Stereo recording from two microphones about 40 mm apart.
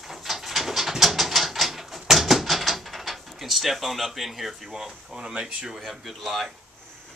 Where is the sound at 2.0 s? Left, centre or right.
Centre.